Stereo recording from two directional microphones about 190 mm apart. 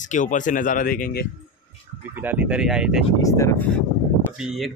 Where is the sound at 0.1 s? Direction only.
40° left (ahead or behind).